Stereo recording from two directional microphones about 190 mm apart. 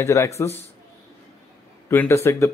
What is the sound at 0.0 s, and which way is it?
Speech, 15° left (ahead or behind).